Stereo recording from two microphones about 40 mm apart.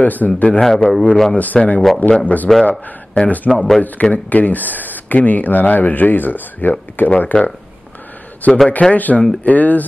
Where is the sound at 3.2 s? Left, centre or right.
Left.